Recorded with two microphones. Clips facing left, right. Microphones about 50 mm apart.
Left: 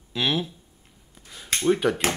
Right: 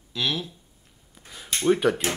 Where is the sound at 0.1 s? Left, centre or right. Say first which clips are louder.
Left 3 dB; left.